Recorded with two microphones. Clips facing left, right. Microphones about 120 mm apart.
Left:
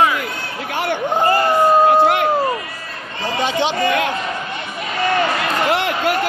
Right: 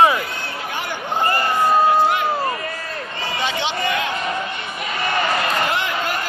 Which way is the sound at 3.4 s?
40° left (ahead or behind).